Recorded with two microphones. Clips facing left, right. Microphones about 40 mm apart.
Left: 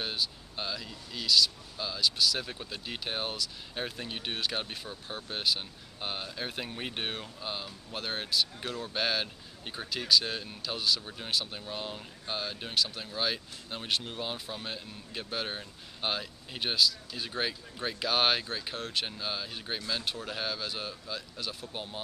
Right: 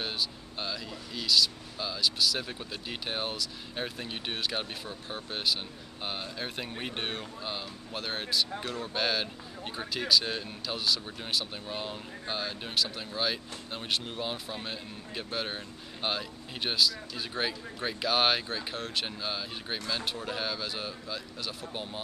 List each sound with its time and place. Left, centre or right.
0.0 s speech: centre